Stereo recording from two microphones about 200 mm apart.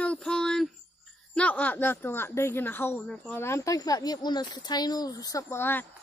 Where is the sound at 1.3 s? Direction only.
5° left (ahead or behind).